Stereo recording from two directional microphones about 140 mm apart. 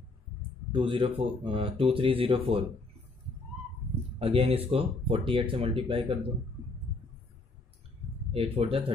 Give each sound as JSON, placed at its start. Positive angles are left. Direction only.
{"t": 0.7, "sound": "speech", "side_deg": -40}
{"t": 4.2, "sound": "speech", "side_deg": -40}
{"t": 8.3, "sound": "speech", "side_deg": -45}